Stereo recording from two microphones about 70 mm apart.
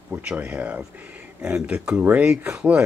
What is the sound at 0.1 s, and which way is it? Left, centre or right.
Speech, centre.